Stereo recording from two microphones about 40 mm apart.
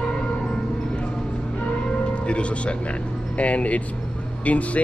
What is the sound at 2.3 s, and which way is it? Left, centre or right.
Speech, left.